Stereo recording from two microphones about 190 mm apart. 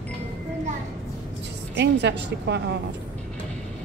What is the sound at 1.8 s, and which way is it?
Speech, 65° right (ahead or behind).